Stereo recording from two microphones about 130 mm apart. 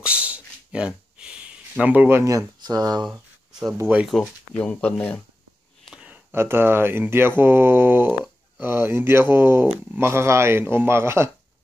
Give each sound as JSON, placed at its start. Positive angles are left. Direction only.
{"t": 0.0, "sound": "a sound", "side_deg": -10}
{"t": 3.8, "sound": "speech", "side_deg": -10}
{"t": 4.2, "sound": "speech", "side_deg": 10}
{"t": 5.9, "sound": "speech", "side_deg": -10}